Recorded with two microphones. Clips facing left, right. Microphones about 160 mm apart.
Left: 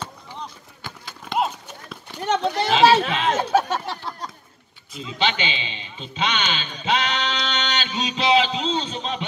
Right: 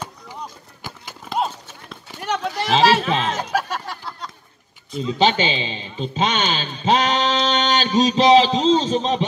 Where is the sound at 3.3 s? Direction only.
25° left (ahead or behind).